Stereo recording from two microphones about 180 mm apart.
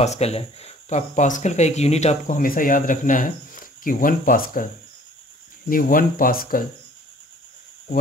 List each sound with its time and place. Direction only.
0.0 s speech: 35° left (ahead or behind)
5.7 s speech: 50° left (ahead or behind)